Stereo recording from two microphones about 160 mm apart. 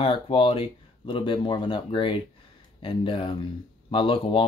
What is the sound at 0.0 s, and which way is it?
Speech, 35° left (ahead or behind).